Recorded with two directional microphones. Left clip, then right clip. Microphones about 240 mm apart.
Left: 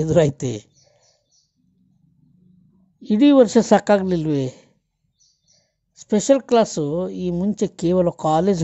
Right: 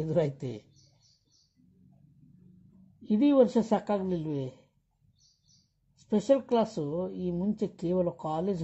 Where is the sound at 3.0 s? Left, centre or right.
Left.